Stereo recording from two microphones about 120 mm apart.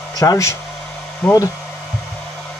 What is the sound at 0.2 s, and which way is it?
Speech, 30° left (ahead or behind).